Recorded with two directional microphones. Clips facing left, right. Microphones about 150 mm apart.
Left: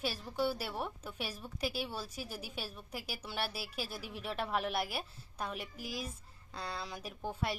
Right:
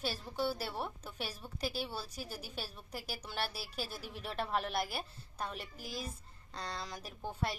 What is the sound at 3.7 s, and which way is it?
Speech, 40° right (ahead or behind).